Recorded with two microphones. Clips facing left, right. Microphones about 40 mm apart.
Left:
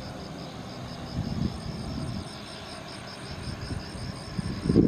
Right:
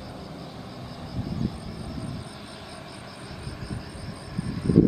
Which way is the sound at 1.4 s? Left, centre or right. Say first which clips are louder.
Right 1 dB; centre.